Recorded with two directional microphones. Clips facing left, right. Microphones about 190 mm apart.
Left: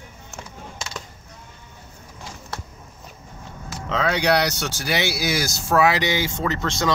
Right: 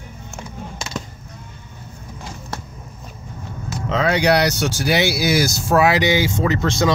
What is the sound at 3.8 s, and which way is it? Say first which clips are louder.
Speech: right 4 dB; 5° right (ahead or behind).